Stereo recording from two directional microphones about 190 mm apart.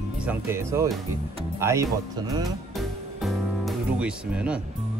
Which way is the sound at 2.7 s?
Centre (ahead or behind).